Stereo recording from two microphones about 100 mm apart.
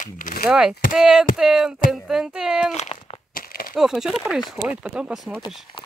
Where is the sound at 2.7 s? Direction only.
90° left.